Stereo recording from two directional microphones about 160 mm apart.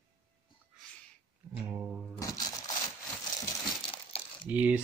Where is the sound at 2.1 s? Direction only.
20° left (ahead or behind).